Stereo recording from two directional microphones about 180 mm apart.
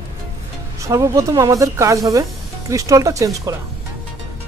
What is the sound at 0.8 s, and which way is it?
Speech, 15° right (ahead or behind).